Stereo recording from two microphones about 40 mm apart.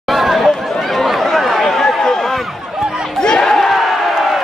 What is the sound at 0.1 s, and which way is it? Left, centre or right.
Chatter, centre.